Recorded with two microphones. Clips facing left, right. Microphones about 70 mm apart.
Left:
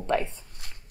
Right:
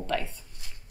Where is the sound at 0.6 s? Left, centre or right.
Left.